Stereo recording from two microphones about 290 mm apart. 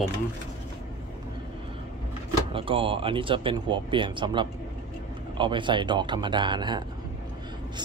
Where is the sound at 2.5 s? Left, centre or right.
Centre.